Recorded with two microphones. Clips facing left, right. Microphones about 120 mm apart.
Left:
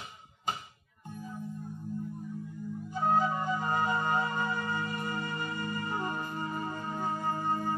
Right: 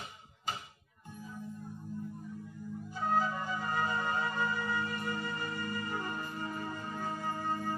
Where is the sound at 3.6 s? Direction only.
25° left (ahead or behind).